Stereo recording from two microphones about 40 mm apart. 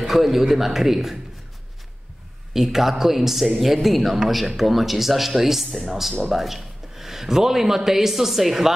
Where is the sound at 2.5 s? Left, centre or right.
Centre.